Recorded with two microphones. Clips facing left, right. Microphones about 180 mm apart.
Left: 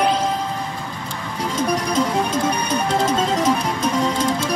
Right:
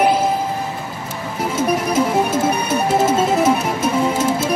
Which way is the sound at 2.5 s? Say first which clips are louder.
Right 3 dB; 5° right (ahead or behind).